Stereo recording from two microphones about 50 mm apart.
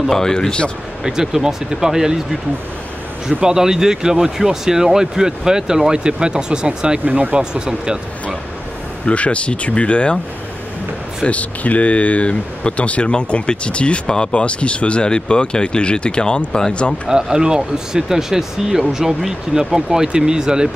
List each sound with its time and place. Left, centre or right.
0.1 s speech: centre
1.0 s speech: centre
3.3 s speech: centre
7.1 s speech: right
7.3 s speech: centre
9.0 s speech: left
11.2 s speech: left
17.1 s speech: centre